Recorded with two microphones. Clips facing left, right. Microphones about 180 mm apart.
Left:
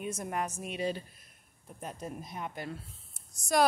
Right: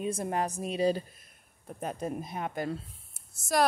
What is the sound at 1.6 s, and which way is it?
Speech, 65° right (ahead or behind).